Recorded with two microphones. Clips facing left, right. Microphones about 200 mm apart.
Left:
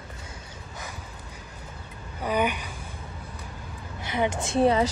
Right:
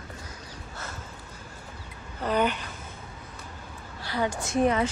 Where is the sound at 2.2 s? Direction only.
10° left (ahead or behind).